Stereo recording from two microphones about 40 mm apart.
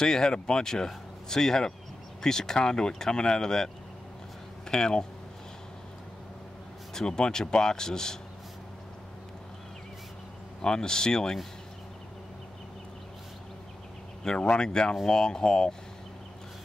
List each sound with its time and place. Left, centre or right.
0.0 s speech: centre
6.9 s speech: centre
10.6 s speech: centre
14.2 s speech: left